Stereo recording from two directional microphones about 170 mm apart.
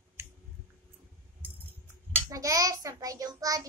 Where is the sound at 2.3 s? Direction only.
20° right (ahead or behind).